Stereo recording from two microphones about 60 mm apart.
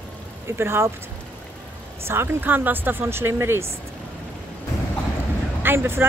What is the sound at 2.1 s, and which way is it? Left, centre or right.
Speech, right.